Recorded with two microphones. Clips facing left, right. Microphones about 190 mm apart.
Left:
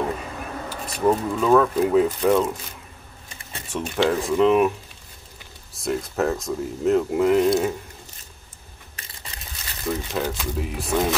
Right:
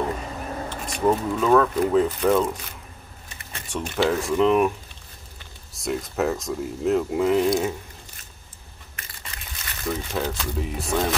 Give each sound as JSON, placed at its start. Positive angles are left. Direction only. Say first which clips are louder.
{"t": 0.7, "sound": "speech", "louder": "left 1 dB", "side_deg": 5}
{"t": 3.7, "sound": "speech", "louder": "left 1 dB", "side_deg": 0}
{"t": 5.8, "sound": "speech", "louder": "left 1 dB", "side_deg": 0}
{"t": 8.9, "sound": "crushing", "louder": "even", "side_deg": 30}
{"t": 9.8, "sound": "speech", "louder": "left 1 dB", "side_deg": 5}